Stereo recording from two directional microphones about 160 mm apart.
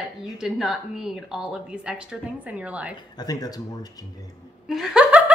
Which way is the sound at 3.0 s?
25° left (ahead or behind).